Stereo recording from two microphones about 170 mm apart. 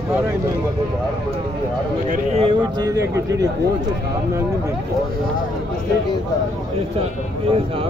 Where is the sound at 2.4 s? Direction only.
35° right (ahead or behind).